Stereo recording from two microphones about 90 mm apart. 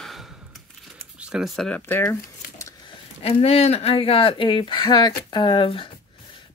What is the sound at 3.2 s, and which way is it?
Speech, 90° left.